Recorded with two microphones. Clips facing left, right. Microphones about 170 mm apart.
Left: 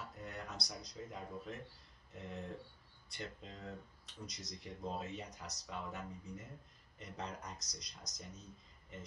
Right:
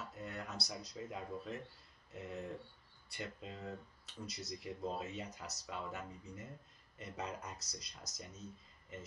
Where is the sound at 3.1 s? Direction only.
10° right (ahead or behind).